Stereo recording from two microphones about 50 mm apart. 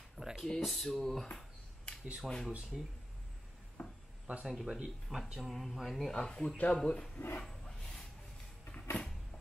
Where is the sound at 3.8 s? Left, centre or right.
Left.